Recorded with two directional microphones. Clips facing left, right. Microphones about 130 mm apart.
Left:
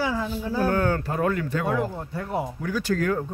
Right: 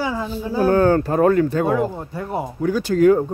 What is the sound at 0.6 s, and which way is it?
Speech, 35° right (ahead or behind).